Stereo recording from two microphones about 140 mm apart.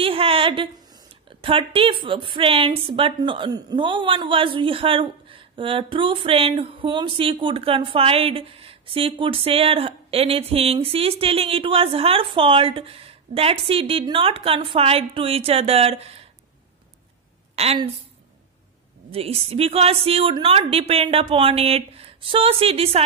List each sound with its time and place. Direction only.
0.0 s a woman's voice: 40° right (ahead or behind)
17.6 s a woman's voice: 50° right (ahead or behind)
19.0 s a woman's voice: 45° right (ahead or behind)